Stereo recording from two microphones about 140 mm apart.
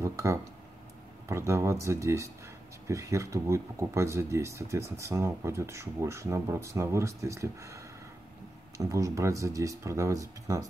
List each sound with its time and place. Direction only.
0.0 s speech: 20° right (ahead or behind)